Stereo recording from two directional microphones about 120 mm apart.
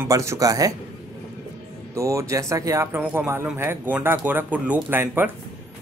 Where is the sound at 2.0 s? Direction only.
25° right (ahead or behind).